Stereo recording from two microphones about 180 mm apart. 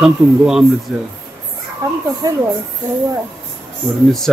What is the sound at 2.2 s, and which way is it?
Speech, 20° right (ahead or behind).